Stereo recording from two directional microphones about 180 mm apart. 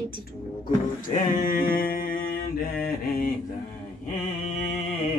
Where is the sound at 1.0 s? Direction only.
50° left (ahead or behind).